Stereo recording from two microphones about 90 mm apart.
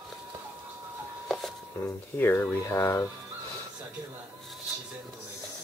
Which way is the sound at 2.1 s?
25° left (ahead or behind).